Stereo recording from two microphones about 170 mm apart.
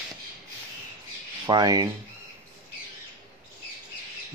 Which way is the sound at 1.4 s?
25° right (ahead or behind).